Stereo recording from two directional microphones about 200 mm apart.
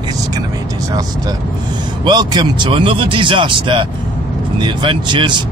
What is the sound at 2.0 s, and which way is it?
Speech, 20° right (ahead or behind).